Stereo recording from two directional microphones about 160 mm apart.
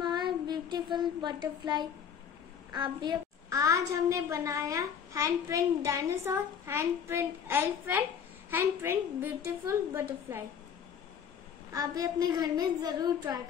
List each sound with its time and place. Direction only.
0.0 s child singing: 25° right (ahead or behind)
2.7 s a woman's voice: 25° right (ahead or behind)
11.7 s a woman's voice: 25° right (ahead or behind)